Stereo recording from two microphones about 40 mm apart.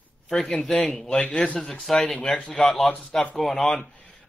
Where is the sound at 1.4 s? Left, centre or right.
Left.